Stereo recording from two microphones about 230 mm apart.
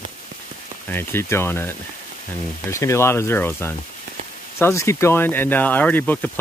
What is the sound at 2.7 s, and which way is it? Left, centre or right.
Speech, centre.